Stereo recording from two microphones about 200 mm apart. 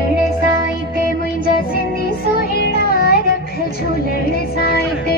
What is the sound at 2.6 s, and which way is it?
Child singing, 50° left (ahead or behind).